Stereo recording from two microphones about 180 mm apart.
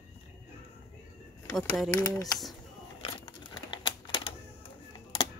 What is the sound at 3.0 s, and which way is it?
Typewriter, 30° left (ahead or behind).